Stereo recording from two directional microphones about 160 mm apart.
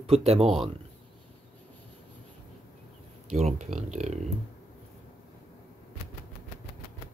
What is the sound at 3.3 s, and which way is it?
Speech, 45° right (ahead or behind).